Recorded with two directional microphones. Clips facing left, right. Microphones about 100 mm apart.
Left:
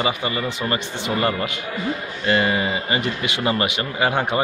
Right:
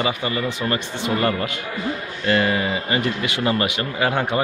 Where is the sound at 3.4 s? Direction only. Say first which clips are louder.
Even; 10° left (ahead or behind).